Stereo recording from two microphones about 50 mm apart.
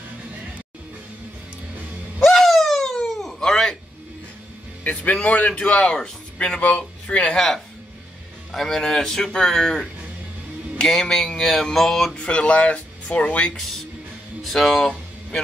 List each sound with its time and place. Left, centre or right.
2.2 s wail: centre
4.8 s speech: left
7.3 s a man's voice: centre
12.2 s speech: left
14.4 s speech: centre